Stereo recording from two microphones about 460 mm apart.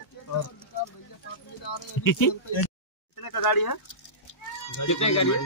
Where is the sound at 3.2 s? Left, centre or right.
Left.